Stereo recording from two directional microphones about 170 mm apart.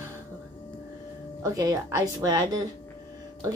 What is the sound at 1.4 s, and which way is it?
Speech, 20° right (ahead or behind).